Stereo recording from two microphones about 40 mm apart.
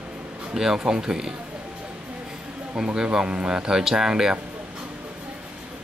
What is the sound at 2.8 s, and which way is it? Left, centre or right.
Speech, centre.